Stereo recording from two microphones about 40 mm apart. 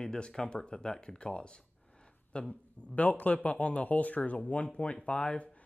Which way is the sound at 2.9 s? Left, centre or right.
Left.